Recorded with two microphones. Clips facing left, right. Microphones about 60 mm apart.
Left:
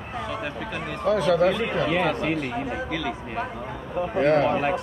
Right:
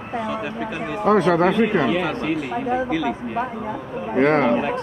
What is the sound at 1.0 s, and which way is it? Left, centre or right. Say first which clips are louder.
Speech: right 4 dB; right.